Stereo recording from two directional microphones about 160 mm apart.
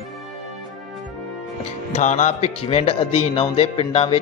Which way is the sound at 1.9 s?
50° left (ahead or behind).